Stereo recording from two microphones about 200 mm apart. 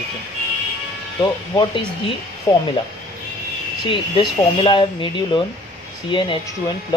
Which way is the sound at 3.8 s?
25° left (ahead or behind).